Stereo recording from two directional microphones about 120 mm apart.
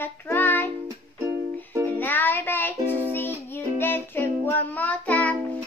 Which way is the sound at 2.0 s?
15° left (ahead or behind).